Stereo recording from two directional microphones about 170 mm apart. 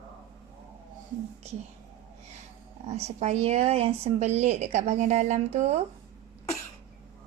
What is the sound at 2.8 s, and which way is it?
Speech, 40° right (ahead or behind).